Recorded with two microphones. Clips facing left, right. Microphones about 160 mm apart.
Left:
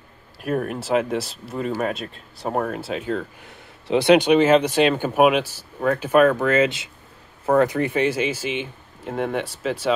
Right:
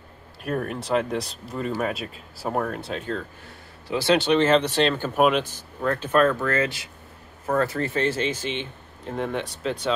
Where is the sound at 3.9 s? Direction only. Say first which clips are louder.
Left 5 dB; 20° left (ahead or behind).